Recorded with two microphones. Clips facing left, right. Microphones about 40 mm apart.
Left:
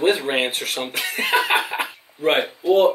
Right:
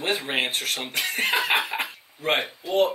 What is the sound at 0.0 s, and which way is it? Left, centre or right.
Speech, centre.